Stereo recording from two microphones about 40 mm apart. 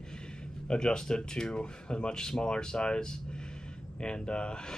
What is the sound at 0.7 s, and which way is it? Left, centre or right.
Speech, left.